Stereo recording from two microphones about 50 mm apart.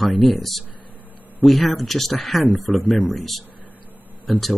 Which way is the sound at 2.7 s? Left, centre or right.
Centre.